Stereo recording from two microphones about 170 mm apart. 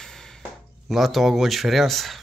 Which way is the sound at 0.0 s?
5° left (ahead or behind).